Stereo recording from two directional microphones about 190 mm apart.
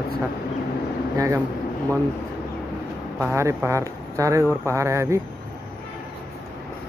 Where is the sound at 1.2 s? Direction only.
15° right (ahead or behind).